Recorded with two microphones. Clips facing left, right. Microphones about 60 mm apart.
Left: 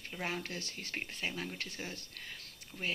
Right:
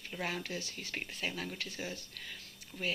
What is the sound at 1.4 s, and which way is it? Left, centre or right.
Speech, left.